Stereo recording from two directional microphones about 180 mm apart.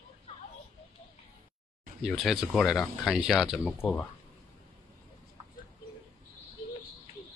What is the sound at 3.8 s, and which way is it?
Speech, 10° left (ahead or behind).